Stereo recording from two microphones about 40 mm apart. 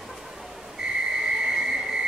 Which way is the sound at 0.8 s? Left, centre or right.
Centre.